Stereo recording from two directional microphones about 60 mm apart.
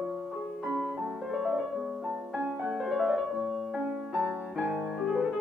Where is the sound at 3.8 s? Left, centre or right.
Right.